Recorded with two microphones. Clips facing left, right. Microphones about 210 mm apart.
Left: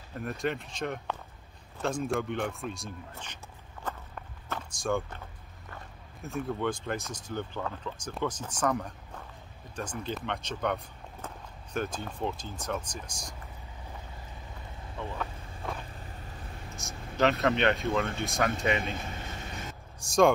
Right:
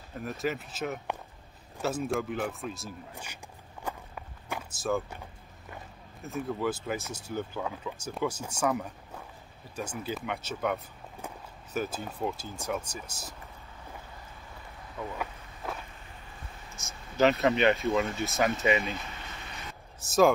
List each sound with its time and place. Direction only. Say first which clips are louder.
0.1 s speech: even; centre (ahead or behind)
3.8 s walk: right 1 dB; 10° right (ahead or behind)
6.2 s speech: even; 5° right (ahead or behind)
15.1 s insect: even; centre (ahead or behind)
16.7 s speech: right 2 dB; centre (ahead or behind)
18.9 s vehicle: left 3 dB; 45° left (ahead or behind)
20.0 s speech: even; 5° right (ahead or behind)